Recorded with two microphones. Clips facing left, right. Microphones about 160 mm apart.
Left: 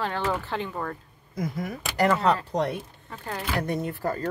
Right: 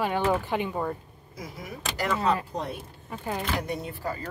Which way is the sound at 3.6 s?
55° left (ahead or behind).